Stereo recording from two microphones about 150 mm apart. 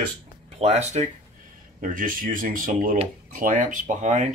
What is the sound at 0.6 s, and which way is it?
Speech, 45° right (ahead or behind).